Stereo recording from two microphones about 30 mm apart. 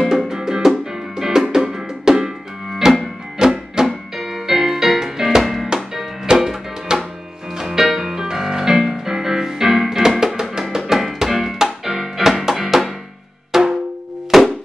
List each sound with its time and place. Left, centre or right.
0.3 s music: centre
1.5 s drum: centre
3.3 s music: centre
5.4 s music: centre